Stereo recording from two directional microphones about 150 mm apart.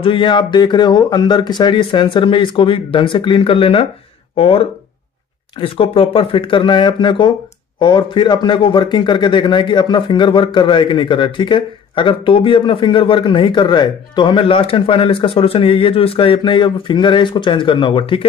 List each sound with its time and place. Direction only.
0.0 s a man's voice: 35° left (ahead or behind)